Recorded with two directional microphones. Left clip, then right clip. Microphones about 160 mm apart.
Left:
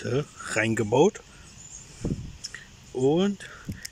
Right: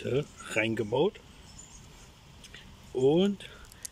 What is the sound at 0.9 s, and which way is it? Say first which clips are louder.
Speech: left 7 dB; 20° left (ahead or behind).